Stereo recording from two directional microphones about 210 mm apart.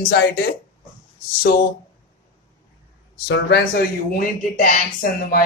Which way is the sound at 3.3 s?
50° left (ahead or behind).